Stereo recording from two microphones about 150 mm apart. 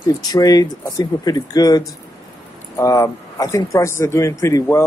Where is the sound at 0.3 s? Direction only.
25° left (ahead or behind).